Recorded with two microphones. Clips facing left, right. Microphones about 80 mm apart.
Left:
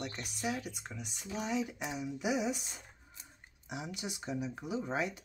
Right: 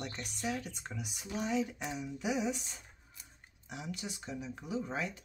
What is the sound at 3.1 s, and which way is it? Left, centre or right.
Speech, left.